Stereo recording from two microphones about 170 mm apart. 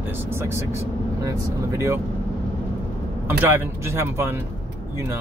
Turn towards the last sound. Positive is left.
turn(degrees=-15)  # may be behind; listen again after turning